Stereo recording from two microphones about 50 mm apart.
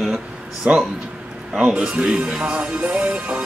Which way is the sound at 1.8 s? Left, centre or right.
Right.